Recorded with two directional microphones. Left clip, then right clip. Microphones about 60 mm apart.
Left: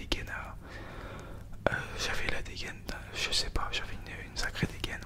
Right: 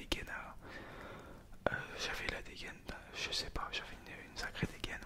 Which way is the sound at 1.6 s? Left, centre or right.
Centre.